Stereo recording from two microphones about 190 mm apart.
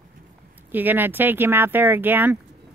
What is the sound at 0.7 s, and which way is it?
Speech, 10° right (ahead or behind).